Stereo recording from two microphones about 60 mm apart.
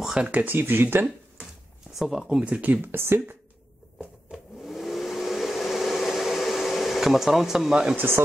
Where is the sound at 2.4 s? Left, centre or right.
Right.